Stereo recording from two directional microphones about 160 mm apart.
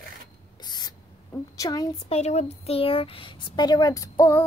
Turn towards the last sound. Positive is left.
turn(degrees=15)  # may be behind; listen again after turning